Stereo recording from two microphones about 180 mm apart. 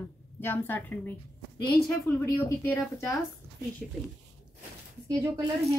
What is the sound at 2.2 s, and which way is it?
Speech, 15° left (ahead or behind).